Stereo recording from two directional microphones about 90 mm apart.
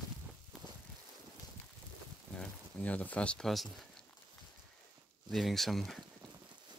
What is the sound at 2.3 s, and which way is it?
Speech, 15° left (ahead or behind).